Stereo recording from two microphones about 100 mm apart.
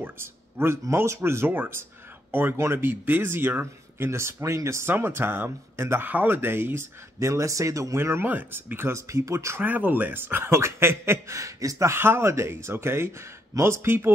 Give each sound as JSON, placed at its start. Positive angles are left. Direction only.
{"t": 0.0, "sound": "speech", "side_deg": -25}
{"t": 9.6, "sound": "speech", "side_deg": -15}